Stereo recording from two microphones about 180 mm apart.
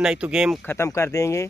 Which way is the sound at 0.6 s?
15° left (ahead or behind).